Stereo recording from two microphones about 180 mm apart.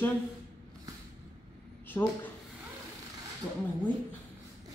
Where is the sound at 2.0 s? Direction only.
15° left (ahead or behind).